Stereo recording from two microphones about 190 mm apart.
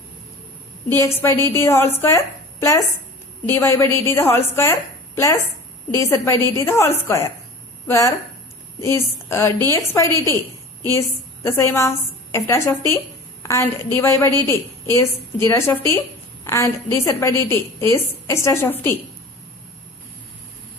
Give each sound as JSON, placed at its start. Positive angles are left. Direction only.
{"t": 1.0, "sound": "a woman's voice", "side_deg": 15}